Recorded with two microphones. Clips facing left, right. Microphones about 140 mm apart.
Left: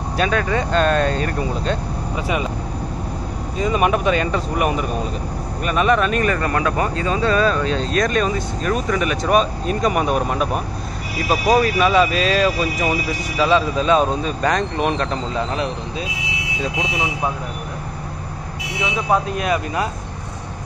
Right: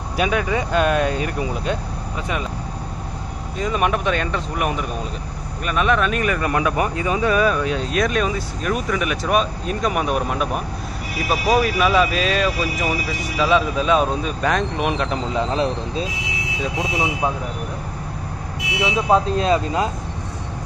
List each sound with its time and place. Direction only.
0.2 s speech: 10° right (ahead or behind)
3.5 s speech: centre (ahead or behind)
15.3 s speech: 25° right (ahead or behind)
19.0 s speech: 25° right (ahead or behind)